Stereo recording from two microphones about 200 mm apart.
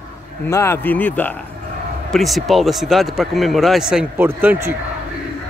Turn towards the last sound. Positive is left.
turn(degrees=-10)  # may be behind; listen again after turning